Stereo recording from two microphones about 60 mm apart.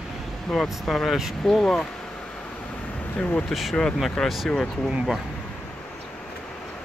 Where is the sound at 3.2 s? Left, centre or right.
Left.